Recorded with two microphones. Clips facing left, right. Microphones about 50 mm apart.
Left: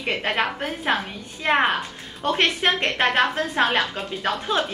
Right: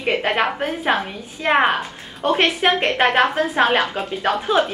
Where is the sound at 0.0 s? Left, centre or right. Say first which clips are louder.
Right 4 dB; centre.